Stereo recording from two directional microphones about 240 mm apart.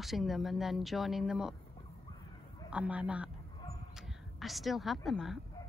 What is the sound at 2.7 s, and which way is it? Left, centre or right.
Speech, centre.